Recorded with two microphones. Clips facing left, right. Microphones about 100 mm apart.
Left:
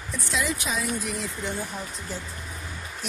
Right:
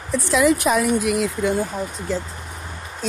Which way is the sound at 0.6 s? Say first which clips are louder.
Right 11 dB; 60° right (ahead or behind).